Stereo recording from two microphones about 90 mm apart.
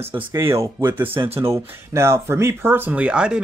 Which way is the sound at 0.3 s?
30° right (ahead or behind).